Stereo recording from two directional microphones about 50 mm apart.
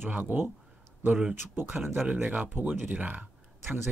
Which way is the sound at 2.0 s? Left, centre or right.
Right.